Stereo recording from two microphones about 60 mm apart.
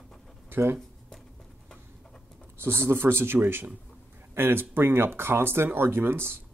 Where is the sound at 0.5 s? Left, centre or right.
Right.